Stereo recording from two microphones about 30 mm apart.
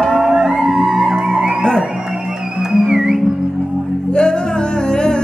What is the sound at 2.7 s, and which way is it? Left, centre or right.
Music, centre.